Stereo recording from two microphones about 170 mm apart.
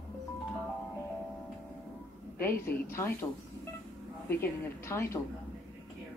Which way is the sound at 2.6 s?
15° left (ahead or behind).